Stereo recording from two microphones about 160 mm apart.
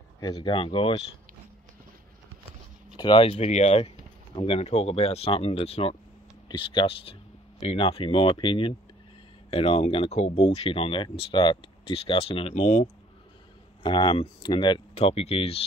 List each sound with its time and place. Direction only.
0.2 s speech: 25° left (ahead or behind)
3.0 s speech: 30° left (ahead or behind)
13.8 s speech: 30° left (ahead or behind)